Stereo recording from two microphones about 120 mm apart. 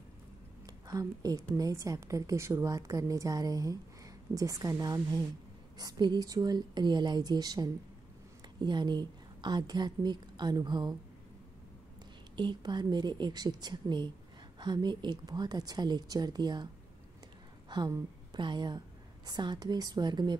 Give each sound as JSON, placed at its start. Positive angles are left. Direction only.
{"t": 0.7, "sound": "a woman's voice", "side_deg": -30}
{"t": 12.4, "sound": "a woman's voice", "side_deg": -40}
{"t": 17.6, "sound": "a woman's voice", "side_deg": -35}